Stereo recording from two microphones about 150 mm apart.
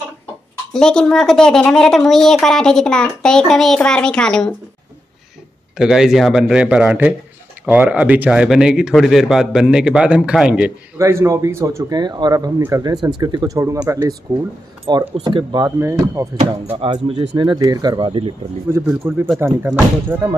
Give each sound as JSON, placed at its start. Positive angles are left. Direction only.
{"t": 0.7, "sound": "a woman's voice", "side_deg": 5}
{"t": 5.8, "sound": "a woman's voice", "side_deg": -5}
{"t": 11.0, "sound": "speech", "side_deg": -20}
{"t": 15.1, "sound": "speech", "side_deg": -30}
{"t": 16.7, "sound": "speech", "side_deg": -35}
{"t": 18.7, "sound": "speech", "side_deg": -20}